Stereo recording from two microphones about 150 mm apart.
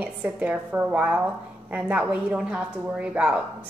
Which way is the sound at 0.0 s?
10° right (ahead or behind).